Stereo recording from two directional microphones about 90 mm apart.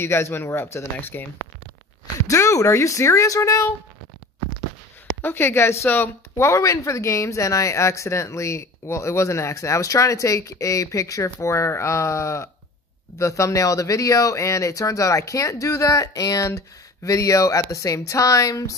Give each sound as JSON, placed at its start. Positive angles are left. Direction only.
{"t": 0.0, "sound": "speech", "side_deg": 30}
{"t": 2.2, "sound": "speech", "side_deg": 35}
{"t": 5.2, "sound": "speech", "side_deg": 25}